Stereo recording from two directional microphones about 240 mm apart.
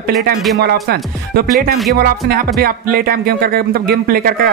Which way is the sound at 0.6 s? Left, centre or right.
Right.